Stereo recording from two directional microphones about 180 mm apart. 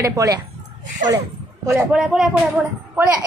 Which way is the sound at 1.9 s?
Centre (ahead or behind).